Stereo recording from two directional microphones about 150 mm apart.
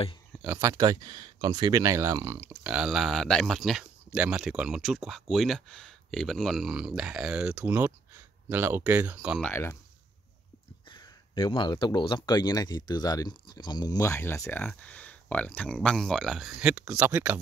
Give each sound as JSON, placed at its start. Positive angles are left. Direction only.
{"t": 0.6, "sound": "speech", "side_deg": -20}
{"t": 9.4, "sound": "speech", "side_deg": 15}
{"t": 10.9, "sound": "speech", "side_deg": 25}